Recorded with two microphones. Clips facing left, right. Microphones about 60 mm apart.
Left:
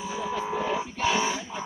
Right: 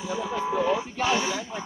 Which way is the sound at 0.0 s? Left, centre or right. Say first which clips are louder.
Right 2 dB; centre.